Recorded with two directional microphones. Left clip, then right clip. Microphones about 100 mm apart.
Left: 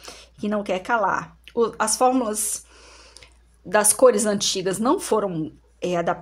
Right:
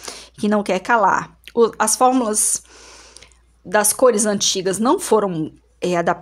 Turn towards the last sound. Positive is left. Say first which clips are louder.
# right 4 dB
turn(degrees=-40)  # may be behind; listen again after turning